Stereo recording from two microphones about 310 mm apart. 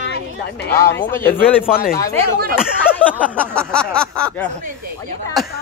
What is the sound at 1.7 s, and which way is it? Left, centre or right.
Speech, left.